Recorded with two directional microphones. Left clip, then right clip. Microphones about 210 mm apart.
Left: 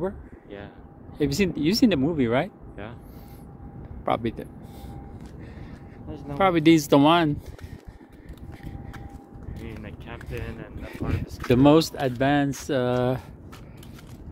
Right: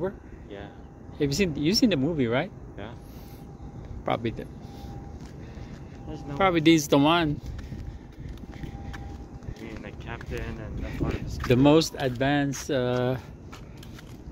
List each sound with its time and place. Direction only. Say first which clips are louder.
1.1 s speech: left 2 dB; 25° left (ahead or behind)
4.0 s speech: left 3 dB; 20° left (ahead or behind)
6.0 s speech: left 1 dB; 40° left (ahead or behind)
6.3 s speech: left 2 dB; 25° left (ahead or behind)
9.8 s a sound: right 1 dB; 30° left (ahead or behind)
10.8 s speech: right 1 dB; 20° left (ahead or behind)